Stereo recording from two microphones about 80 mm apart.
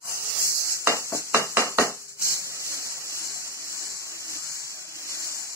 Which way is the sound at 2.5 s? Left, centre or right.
Right.